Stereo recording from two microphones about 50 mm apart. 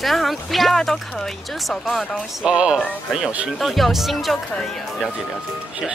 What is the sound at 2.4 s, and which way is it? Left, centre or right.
Speech, right.